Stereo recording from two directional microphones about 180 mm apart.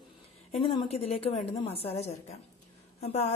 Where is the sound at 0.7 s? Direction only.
35° left (ahead or behind).